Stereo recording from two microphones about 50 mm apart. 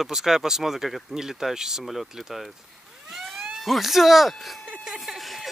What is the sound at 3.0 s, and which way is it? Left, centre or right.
Police car, centre.